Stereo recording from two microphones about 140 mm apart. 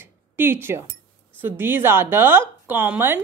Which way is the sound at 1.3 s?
15° right (ahead or behind).